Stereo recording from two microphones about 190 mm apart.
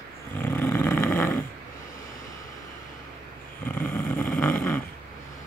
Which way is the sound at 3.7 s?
10° left (ahead or behind).